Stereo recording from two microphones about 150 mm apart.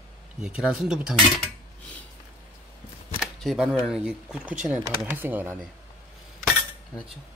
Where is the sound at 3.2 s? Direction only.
5° right (ahead or behind).